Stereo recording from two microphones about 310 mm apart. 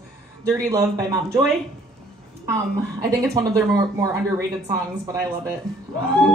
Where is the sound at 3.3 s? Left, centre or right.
Centre.